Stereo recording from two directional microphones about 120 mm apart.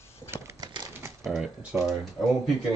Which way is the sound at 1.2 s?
Centre (ahead or behind).